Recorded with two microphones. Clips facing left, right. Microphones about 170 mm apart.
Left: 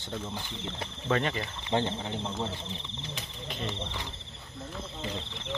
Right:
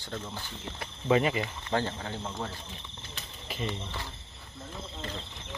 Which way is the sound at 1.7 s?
20° left (ahead or behind).